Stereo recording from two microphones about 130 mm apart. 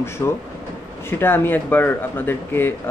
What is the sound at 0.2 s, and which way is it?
Speech, 25° left (ahead or behind).